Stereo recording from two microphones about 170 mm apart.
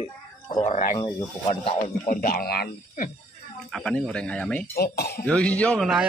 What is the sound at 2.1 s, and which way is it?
Speech, 55° left (ahead or behind).